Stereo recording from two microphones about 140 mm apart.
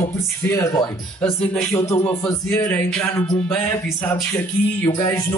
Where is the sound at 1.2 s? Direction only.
10° left (ahead or behind).